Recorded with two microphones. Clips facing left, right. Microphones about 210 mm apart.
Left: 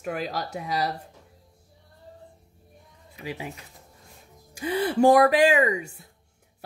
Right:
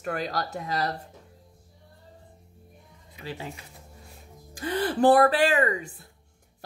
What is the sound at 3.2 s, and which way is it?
Speech, 15° left (ahead or behind).